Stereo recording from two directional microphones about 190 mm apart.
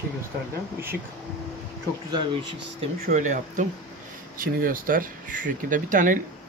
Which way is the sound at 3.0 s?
40° right (ahead or behind).